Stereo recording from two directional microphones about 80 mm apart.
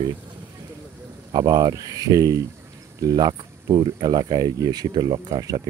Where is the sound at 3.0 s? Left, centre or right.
Right.